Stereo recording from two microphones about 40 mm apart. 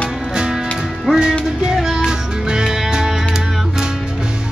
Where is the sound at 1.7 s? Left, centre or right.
Centre.